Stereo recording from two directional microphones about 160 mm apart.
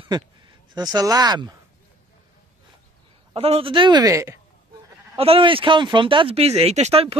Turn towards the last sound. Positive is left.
turn(degrees=-40)  # may be behind; listen again after turning